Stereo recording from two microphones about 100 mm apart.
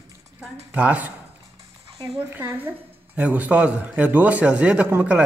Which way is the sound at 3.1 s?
15° right (ahead or behind).